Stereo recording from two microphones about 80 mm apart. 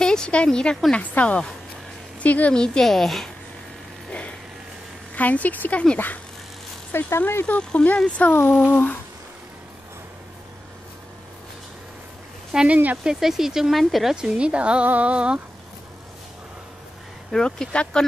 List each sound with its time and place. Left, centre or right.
0.0 s a woman's voice: centre
5.1 s speech: centre
6.9 s speech: left
7.5 s a woman's voice: centre
12.5 s speech: centre
13.0 s speech: centre
17.3 s a woman's voice: centre